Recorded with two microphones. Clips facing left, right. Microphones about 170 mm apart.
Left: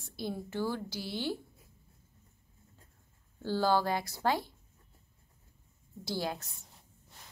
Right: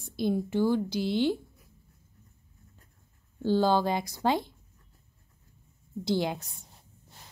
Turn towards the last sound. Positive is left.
turn(degrees=-20)  # may be behind; listen again after turning